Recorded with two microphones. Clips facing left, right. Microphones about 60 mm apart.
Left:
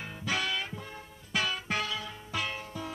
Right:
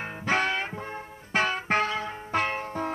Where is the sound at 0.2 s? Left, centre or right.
Right.